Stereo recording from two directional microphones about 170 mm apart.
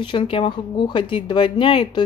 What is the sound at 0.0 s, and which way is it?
Speech, 30° left (ahead or behind).